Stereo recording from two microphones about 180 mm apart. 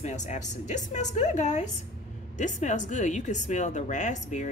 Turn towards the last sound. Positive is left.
turn(degrees=40)  # may be behind; listen again after turning